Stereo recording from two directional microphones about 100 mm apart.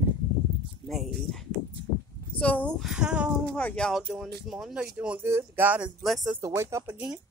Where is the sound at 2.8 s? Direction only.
5° right (ahead or behind).